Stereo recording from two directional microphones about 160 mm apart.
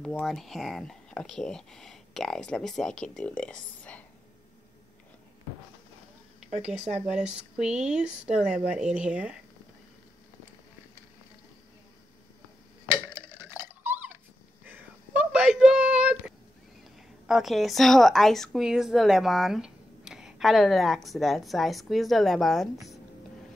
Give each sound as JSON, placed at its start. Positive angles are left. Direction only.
{"t": 0.0, "sound": "speech", "side_deg": 5}
{"t": 6.4, "sound": "speech", "side_deg": -5}
{"t": 13.1, "sound": "a sound", "side_deg": -15}
{"t": 17.3, "sound": "speech", "side_deg": 0}